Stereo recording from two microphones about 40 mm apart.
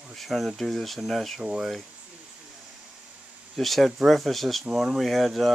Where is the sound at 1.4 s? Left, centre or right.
Right.